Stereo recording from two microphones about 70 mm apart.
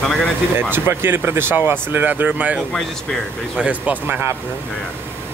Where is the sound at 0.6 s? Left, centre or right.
Right.